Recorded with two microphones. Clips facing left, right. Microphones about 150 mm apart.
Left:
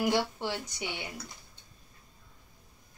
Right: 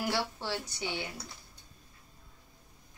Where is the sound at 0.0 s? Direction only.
15° left (ahead or behind).